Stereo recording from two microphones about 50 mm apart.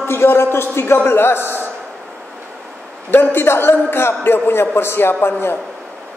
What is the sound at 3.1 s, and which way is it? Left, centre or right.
A man's voice, left.